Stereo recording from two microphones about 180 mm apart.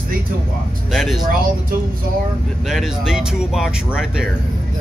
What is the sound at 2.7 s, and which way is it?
Speech, centre (ahead or behind).